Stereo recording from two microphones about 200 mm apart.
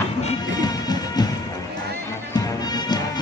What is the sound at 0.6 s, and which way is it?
Music, 20° left (ahead or behind).